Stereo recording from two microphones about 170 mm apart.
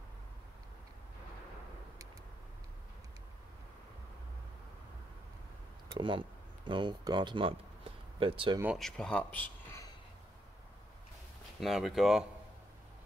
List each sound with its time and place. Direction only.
5.9 s speech: 30° right (ahead or behind)
8.7 s speech: 5° left (ahead or behind)
11.6 s speech: centre (ahead or behind)